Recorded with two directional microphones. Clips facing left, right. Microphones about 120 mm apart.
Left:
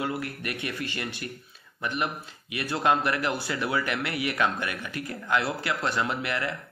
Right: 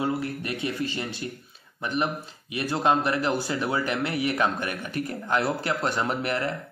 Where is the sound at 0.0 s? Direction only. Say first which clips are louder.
Right 3 dB; 25° right (ahead or behind).